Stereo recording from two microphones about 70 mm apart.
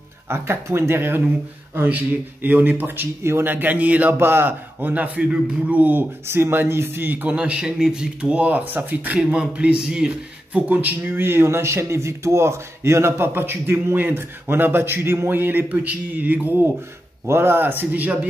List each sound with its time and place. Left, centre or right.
0.3 s a man's voice: right
5.3 s speech: centre
5.8 s speech: right
7.3 s speech: centre
10.7 s a man's voice: right